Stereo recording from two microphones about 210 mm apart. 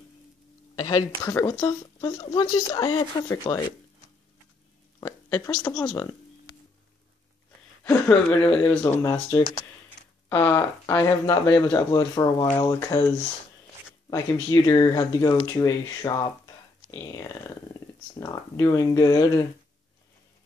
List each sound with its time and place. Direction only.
0.7 s speech: 20° left (ahead or behind)
5.0 s speech: 15° left (ahead or behind)
7.8 s speech: 5° left (ahead or behind)
9.0 s speech: 20° left (ahead or behind)
9.8 s speech: 10° left (ahead or behind)
14.1 s speech: 20° left (ahead or behind)